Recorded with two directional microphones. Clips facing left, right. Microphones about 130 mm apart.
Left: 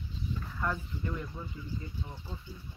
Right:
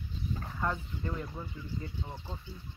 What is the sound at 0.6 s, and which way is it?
Speech, 20° right (ahead or behind).